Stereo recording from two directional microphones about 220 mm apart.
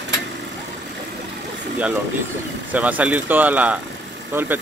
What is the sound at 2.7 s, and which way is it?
Speech, 5° right (ahead or behind).